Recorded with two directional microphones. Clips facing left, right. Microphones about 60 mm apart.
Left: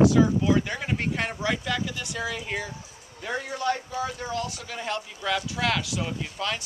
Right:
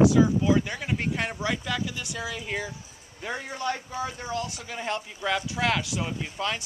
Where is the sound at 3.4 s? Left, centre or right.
Right.